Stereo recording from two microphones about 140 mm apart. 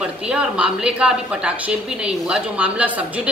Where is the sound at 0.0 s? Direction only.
5° right (ahead or behind).